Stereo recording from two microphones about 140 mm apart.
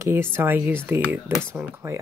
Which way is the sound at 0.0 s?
15° right (ahead or behind).